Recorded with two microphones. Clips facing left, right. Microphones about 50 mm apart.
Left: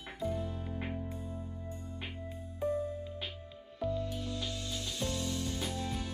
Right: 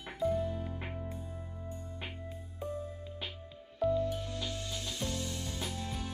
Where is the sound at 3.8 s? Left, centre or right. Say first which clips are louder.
Right 4 dB; right.